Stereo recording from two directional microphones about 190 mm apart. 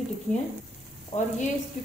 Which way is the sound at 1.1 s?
35° left (ahead or behind).